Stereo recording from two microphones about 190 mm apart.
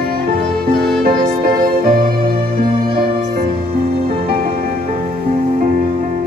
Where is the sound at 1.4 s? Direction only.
45° right (ahead or behind).